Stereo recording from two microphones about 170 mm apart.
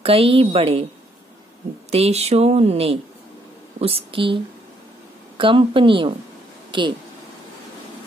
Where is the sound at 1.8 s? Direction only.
40° right (ahead or behind).